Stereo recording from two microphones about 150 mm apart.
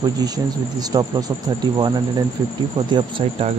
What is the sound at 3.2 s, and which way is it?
Speech, 35° right (ahead or behind).